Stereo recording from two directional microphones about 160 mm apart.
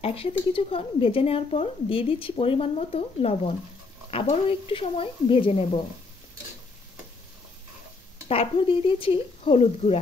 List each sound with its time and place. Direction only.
0.0 s speech: 35° left (ahead or behind)
8.3 s speech: 35° left (ahead or behind)